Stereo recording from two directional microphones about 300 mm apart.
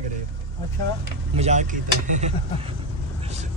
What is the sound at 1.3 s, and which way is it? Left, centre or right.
Speech, right.